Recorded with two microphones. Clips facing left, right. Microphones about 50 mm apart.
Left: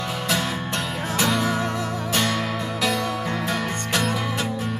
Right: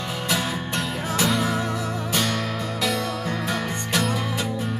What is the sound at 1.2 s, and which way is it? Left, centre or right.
Music, centre.